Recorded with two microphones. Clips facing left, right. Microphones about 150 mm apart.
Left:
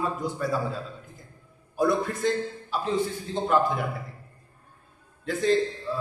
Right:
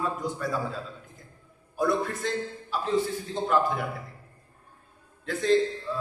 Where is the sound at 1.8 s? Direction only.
Centre (ahead or behind).